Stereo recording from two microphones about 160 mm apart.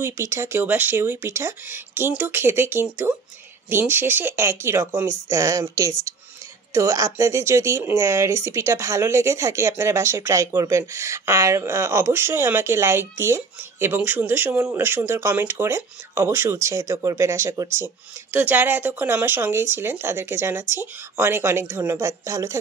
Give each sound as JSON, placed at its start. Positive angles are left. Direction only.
{"t": 0.0, "sound": "speech", "side_deg": -15}